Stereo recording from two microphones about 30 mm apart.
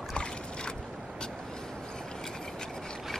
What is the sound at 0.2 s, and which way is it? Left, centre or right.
Boat, left.